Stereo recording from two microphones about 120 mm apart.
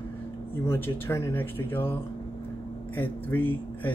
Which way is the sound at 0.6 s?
20° left (ahead or behind).